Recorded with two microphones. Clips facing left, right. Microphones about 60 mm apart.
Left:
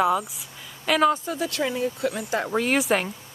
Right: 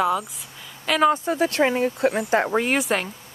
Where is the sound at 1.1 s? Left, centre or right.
Right.